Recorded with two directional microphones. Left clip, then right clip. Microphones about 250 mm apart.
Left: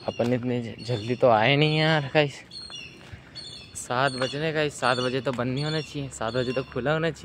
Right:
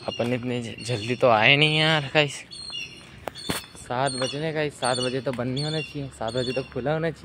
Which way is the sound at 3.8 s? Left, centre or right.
Centre.